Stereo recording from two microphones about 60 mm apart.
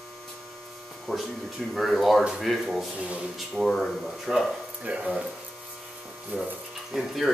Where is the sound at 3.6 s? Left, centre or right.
Centre.